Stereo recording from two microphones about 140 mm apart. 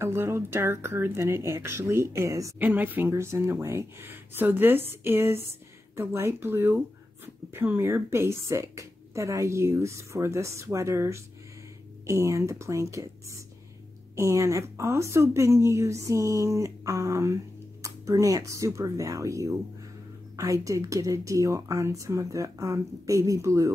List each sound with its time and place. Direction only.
0.0 s a woman's voice: 20° right (ahead or behind)
2.6 s a woman's voice: 10° right (ahead or behind)